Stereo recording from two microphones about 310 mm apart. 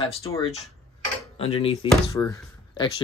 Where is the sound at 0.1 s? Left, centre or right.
Centre.